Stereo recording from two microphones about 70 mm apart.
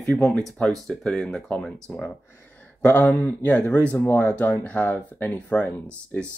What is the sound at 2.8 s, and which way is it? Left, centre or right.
Speech, left.